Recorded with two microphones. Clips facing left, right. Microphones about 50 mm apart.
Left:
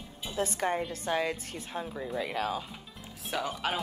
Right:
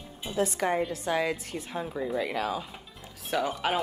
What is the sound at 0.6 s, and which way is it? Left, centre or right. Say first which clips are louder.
Speech: right 1 dB; right.